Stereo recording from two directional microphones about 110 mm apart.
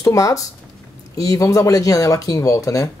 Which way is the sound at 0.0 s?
30° left (ahead or behind).